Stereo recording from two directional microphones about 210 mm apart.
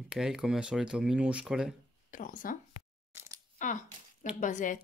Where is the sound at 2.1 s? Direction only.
40° left (ahead or behind).